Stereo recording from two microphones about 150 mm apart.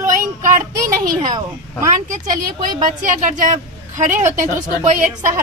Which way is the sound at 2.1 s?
60° right (ahead or behind).